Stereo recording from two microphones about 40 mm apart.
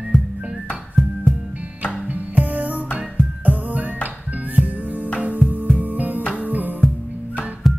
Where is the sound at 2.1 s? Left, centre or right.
Right.